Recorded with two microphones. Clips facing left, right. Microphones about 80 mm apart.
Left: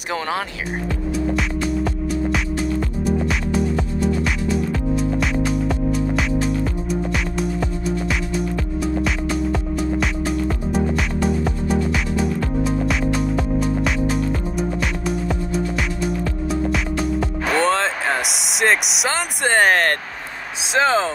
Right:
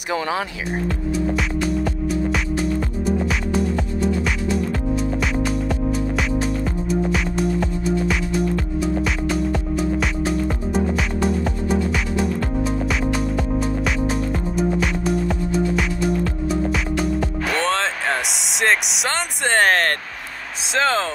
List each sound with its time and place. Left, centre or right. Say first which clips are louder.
0.1 s speech: right 1 dB; left
4.7 s music: left 1 dB; centre
8.1 s music: right 2 dB; centre
18.4 s a sound: left 1 dB; centre
18.9 s speech: left 1 dB; centre